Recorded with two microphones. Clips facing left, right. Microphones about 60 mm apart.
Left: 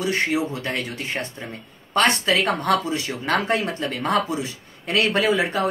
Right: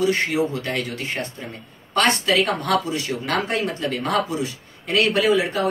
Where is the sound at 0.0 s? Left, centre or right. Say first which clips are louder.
Right 2 dB; left.